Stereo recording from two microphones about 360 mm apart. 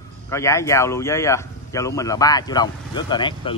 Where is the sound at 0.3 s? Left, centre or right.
Centre.